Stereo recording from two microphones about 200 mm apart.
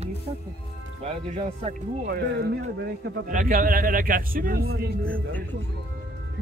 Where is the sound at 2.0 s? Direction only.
55° right (ahead or behind).